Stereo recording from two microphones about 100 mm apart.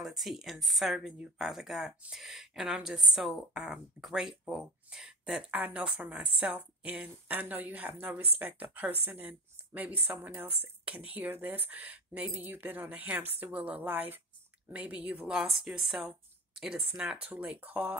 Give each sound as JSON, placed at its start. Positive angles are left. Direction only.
{"t": 0.0, "sound": "speech", "side_deg": 0}